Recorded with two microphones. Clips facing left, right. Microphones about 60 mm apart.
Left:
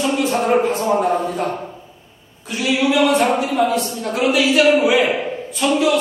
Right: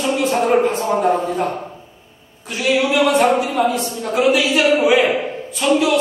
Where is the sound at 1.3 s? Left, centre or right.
Right.